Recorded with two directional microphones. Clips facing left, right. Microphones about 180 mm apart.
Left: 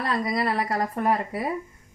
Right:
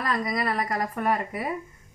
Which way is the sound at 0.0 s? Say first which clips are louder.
Left 2 dB; 30° left (ahead or behind).